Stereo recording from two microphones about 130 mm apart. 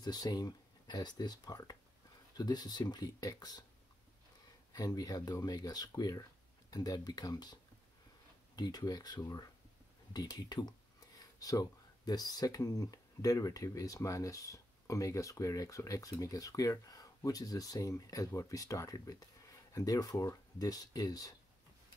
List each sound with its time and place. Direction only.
0.0 s speech: 30° left (ahead or behind)
4.7 s speech: 30° left (ahead or behind)
8.5 s speech: 30° left (ahead or behind)